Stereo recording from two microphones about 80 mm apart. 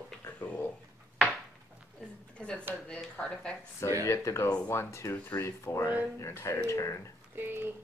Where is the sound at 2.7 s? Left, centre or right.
Centre.